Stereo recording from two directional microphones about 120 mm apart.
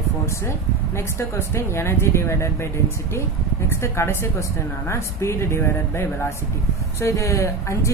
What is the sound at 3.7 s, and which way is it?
Speech, 20° left (ahead or behind).